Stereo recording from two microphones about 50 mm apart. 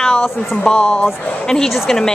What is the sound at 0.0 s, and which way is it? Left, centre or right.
A woman's voice, centre.